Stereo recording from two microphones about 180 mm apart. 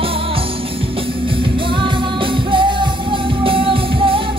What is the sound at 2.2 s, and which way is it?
Music, 25° right (ahead or behind).